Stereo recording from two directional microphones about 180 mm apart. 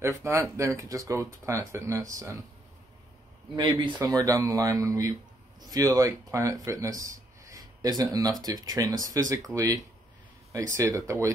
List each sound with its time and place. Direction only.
0.0 s speech: 15° right (ahead or behind)
3.5 s speech: 25° right (ahead or behind)